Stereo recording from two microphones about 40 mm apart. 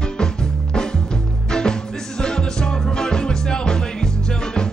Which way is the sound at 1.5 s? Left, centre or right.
Centre.